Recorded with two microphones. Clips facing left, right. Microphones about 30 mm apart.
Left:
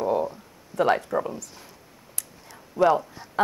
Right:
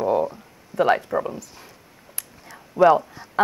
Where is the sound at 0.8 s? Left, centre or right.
Centre.